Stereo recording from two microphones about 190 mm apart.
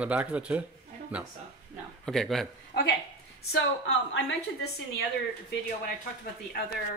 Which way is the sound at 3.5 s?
75° left (ahead or behind).